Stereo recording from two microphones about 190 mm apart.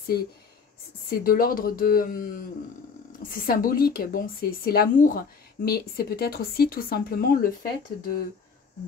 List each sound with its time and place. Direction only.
1.1 s speech: 50° left (ahead or behind)